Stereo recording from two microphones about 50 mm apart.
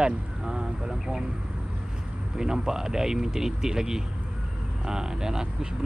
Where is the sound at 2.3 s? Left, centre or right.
Centre.